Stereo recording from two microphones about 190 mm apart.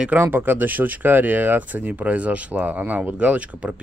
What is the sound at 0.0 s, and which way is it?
Speech, 10° right (ahead or behind).